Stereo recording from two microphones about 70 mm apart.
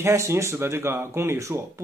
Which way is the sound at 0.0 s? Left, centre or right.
Right.